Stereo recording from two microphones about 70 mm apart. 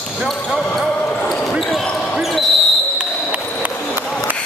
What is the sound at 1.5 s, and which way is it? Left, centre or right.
Basketball bounce, centre.